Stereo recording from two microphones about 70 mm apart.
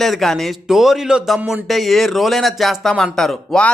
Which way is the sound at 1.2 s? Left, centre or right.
Centre.